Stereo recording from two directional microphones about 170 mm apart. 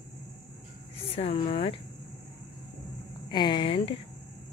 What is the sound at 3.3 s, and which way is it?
Speech, 25° left (ahead or behind).